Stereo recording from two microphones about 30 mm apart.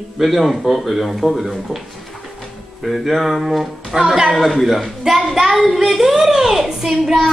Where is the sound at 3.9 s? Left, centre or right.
Right.